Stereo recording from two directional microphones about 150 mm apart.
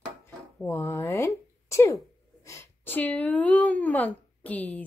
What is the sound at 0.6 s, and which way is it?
Speech, 20° left (ahead or behind).